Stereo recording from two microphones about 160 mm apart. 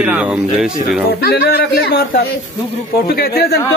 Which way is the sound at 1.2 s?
70° left (ahead or behind).